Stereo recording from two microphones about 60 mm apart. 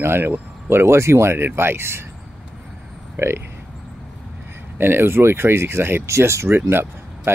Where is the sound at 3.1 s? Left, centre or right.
Right.